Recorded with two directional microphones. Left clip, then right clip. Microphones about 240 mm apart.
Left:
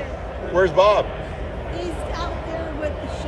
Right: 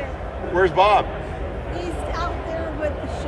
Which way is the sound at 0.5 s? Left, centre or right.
Centre.